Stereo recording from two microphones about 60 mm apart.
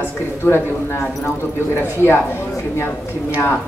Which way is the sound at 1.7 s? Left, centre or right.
Left.